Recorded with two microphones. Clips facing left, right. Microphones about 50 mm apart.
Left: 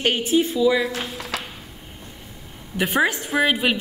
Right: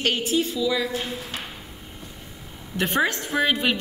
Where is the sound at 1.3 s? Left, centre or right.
Left.